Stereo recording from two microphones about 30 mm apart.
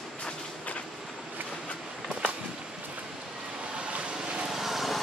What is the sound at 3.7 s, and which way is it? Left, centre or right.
Vehicle, right.